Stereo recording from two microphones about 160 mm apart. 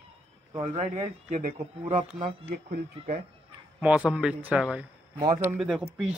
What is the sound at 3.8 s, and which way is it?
A man's voice, 5° right (ahead or behind).